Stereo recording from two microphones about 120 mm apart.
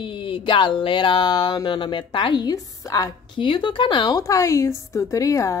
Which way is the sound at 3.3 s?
45° left (ahead or behind).